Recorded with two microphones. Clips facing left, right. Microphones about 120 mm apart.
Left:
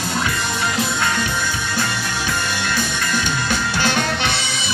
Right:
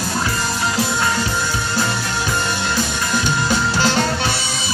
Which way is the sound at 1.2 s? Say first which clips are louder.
Right 2 dB; 35° right (ahead or behind).